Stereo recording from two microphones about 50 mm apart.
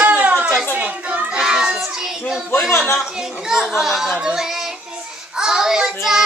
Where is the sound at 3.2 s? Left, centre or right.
Centre.